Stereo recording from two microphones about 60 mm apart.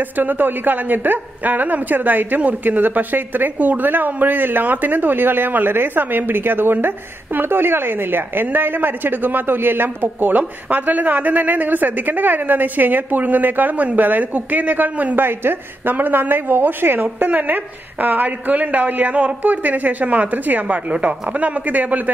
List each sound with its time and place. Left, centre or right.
0.2 s a woman's voice: right